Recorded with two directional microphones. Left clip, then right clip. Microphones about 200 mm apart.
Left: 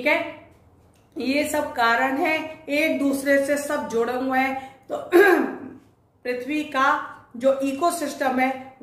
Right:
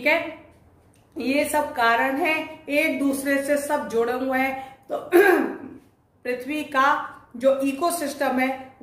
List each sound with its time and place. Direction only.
1.1 s a woman's voice: 10° right (ahead or behind)